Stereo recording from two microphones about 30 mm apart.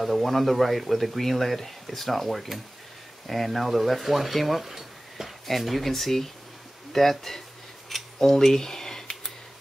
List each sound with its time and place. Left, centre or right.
0.0 s speech: centre